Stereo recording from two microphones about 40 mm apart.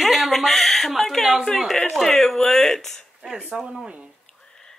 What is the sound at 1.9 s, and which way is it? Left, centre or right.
Speech, centre.